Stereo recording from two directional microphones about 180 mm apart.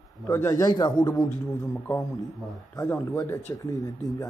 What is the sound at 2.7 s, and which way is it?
A man's voice, 20° left (ahead or behind).